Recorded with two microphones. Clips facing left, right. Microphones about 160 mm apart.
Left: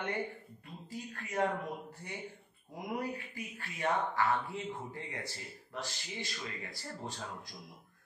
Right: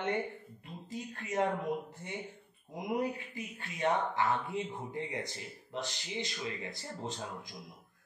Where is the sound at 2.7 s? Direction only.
20° right (ahead or behind).